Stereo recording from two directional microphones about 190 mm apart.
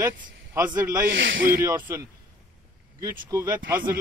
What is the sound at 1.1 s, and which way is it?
Speech, 80° right.